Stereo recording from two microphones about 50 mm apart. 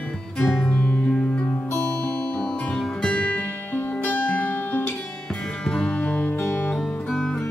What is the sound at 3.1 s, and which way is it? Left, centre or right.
Music, left.